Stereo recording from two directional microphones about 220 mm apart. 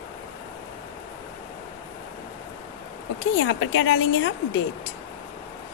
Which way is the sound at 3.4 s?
60° left (ahead or behind).